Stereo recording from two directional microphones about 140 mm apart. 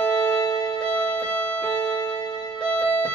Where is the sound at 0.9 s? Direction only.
10° left (ahead or behind).